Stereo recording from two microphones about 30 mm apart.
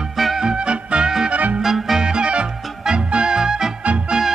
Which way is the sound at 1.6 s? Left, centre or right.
Centre.